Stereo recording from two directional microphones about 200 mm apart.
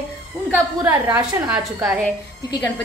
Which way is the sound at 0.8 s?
10° right (ahead or behind).